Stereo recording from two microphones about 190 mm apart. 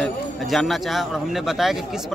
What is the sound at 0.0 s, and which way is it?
A man's voice, centre (ahead or behind).